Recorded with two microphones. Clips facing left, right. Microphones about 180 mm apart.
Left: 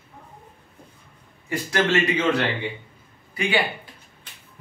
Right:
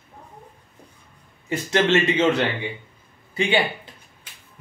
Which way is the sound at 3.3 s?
25° right (ahead or behind).